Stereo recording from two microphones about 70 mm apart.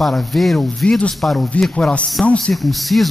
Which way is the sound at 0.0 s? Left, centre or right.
Centre.